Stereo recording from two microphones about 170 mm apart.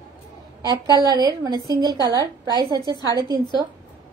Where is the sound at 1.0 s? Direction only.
25° right (ahead or behind).